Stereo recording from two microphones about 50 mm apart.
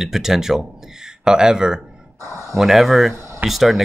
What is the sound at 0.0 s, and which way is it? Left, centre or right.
Speech, centre.